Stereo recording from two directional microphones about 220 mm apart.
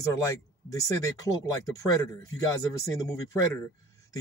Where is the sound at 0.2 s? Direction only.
15° left (ahead or behind).